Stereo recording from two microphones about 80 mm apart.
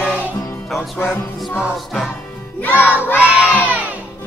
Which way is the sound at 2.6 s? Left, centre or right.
Left.